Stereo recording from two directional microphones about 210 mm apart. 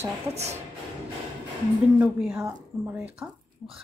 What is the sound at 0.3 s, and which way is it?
Speech, 30° right (ahead or behind).